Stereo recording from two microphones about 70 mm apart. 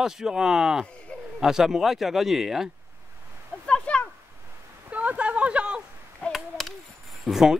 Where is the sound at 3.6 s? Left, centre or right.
Centre.